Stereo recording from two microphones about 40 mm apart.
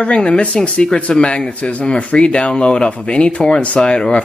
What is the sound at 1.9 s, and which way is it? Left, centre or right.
Speech, left.